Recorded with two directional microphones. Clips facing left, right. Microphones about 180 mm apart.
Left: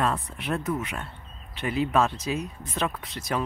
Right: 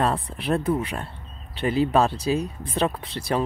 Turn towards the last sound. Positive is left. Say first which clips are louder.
# right 4 dB
turn(degrees=-30)  # may be behind; listen again after turning